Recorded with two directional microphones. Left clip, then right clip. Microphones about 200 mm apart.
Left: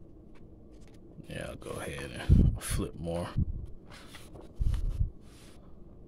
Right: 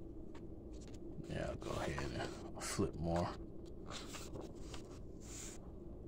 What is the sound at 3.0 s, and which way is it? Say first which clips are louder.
Rub: left 5 dB; 40° left (ahead or behind).